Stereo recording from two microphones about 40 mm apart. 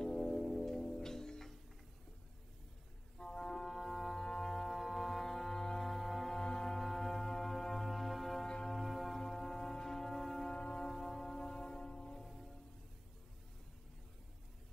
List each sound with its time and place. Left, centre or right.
0.0 s music: centre
0.3 s music: centre
3.2 s music: centre
3.5 s music: centre
6.3 s music: centre
8.4 s music: centre
8.7 s music: centre
10.5 s music: centre
10.9 s music: centre